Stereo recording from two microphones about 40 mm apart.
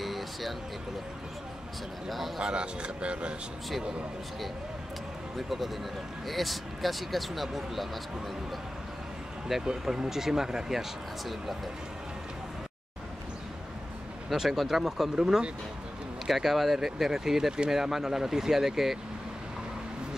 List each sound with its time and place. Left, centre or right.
0.0 s a sound: centre
2.0 s speech: centre
2.4 s speech: right
6.2 s speech: centre
9.7 s speech: centre
14.3 s speech: centre